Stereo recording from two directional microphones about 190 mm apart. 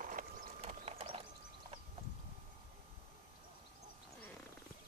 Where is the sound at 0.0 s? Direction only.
45° right (ahead or behind).